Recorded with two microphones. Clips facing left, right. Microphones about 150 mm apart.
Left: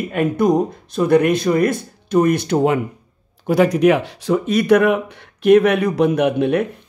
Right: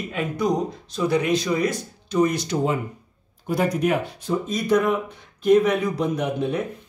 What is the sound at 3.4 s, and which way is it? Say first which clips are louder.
Speech: left 8 dB; 80° left.